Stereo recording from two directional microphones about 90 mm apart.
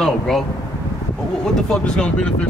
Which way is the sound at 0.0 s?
Centre (ahead or behind).